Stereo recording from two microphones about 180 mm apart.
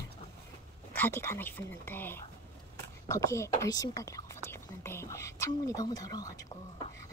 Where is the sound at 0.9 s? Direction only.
10° left (ahead or behind).